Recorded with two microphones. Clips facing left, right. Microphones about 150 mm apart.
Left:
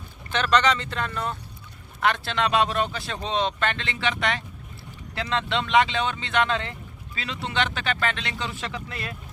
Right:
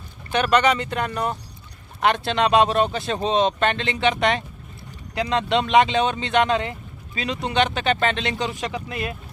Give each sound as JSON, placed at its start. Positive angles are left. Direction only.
{"t": 0.3, "sound": "speech", "side_deg": -10}